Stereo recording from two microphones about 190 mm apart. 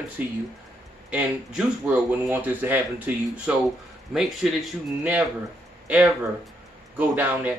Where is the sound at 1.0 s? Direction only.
5° right (ahead or behind).